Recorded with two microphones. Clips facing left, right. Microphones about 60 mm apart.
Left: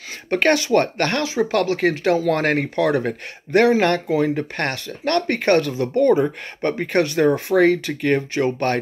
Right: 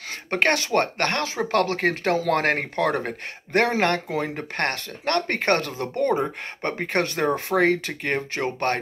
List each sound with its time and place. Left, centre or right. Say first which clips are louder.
0.3 s speech: left 5 dB; right
6.2 s speech: left 5 dB; right